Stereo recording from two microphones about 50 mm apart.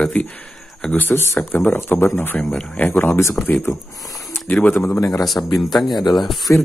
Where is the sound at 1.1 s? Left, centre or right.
Left.